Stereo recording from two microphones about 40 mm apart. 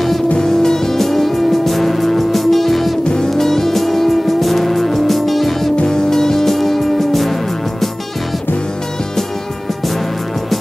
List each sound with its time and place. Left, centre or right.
0.4 s music: centre
3.0 s music: centre
3.3 s music: centre
5.9 s music: centre